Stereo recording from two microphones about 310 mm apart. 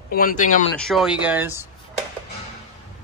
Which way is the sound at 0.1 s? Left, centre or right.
Left.